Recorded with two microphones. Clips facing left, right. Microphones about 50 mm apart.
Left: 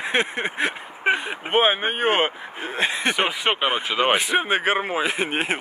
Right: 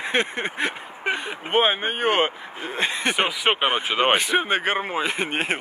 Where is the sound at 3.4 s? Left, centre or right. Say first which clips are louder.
Right 3 dB; centre.